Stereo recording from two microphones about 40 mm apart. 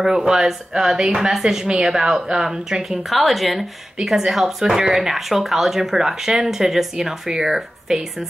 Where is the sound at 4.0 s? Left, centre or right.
Centre.